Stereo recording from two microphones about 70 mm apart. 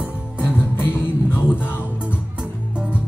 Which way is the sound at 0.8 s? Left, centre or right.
Left.